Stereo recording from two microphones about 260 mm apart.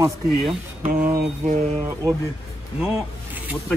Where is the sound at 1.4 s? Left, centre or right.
Right.